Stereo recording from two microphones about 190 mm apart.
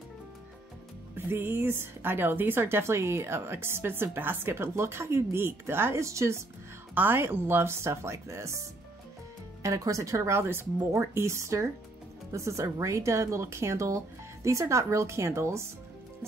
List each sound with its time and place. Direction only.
1.1 s speech: 10° right (ahead or behind)